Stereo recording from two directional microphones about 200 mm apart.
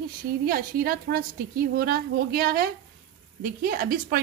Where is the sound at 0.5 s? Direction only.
45° right (ahead or behind).